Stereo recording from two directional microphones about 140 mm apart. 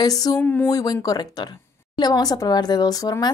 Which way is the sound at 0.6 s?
25° left (ahead or behind).